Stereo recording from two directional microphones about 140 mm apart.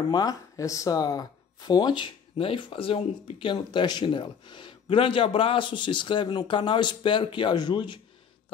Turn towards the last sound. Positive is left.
turn(degrees=35)  # may be behind; listen again after turning